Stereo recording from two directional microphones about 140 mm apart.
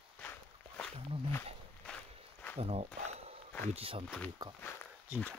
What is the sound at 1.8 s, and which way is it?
Walk, 10° left (ahead or behind).